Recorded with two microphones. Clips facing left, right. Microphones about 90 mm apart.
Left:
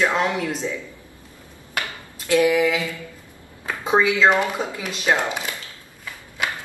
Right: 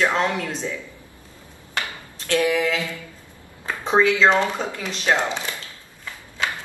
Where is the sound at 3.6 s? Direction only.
10° left (ahead or behind).